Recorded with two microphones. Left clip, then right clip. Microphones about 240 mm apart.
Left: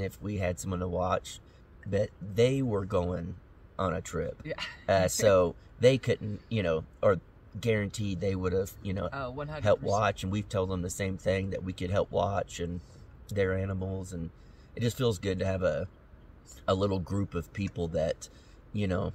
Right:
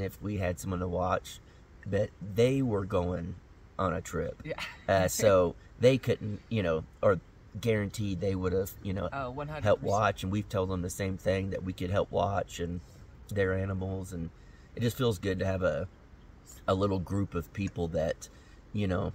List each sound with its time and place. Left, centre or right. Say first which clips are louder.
0.0 s speech: left 1 dB; centre
4.4 s speech: left 1 dB; centre
4.8 s speech: left 1 dB; centre
9.1 s speech: even; centre
9.9 s speech: even; centre